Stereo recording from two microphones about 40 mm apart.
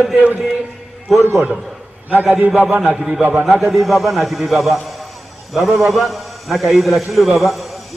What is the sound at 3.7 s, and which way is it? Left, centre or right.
A man's voice, centre.